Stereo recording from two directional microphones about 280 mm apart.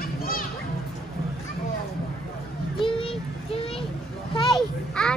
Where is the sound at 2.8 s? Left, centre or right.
Centre.